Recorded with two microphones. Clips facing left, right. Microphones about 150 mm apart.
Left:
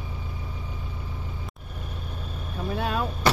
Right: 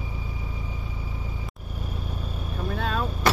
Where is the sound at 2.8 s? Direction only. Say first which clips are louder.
Left 1 dB; 10° left (ahead or behind).